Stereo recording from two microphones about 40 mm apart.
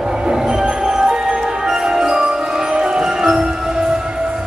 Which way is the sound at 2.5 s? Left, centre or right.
Centre.